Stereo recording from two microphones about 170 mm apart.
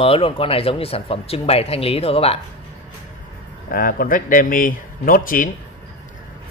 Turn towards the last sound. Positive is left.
turn(degrees=55)  # may be behind; listen again after turning